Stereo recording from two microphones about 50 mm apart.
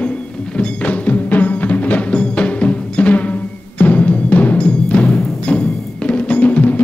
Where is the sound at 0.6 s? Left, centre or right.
Left.